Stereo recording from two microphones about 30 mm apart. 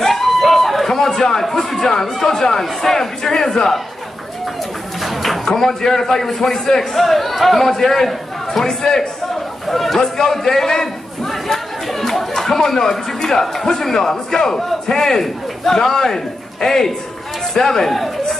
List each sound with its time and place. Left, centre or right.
0.1 s a sound: centre
1.2 s a man's voice: centre
5.0 s a sound: centre
5.5 s a man's voice: centre
7.0 s a man's voice: centre; by 9.1 s left
9.7 s a man's voice: centre
9.9 s a man's voice: centre
11.2 s chatter: centre
13.7 s a man's voice: centre
17.9 s chatter: centre